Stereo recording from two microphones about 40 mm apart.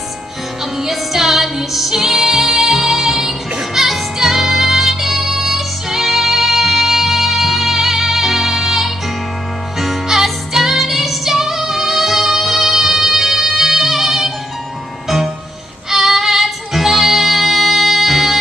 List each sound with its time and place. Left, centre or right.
0.7 s music: centre